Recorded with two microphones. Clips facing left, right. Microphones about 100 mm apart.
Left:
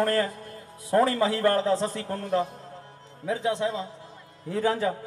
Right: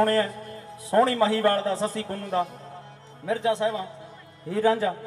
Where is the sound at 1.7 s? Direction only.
15° right (ahead or behind).